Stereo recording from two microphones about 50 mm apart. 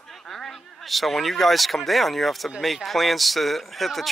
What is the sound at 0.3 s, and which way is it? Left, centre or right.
Speech, centre.